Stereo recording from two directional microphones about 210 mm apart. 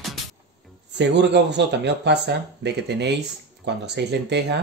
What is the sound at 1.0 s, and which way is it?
Speech, 55° right (ahead or behind).